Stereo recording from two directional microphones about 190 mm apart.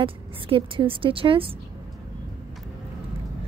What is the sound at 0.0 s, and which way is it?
Speech, 30° right (ahead or behind).